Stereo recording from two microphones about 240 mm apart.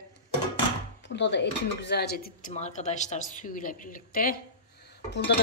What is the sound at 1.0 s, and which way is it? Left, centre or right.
Speech, left.